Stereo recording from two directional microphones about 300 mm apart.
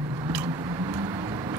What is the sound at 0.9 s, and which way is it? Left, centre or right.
Vehicle, centre.